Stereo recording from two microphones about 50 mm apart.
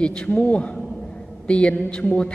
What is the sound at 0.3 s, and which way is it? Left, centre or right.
Mantra, left.